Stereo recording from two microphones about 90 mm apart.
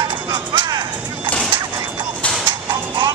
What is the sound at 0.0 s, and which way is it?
Music, 55° right (ahead or behind).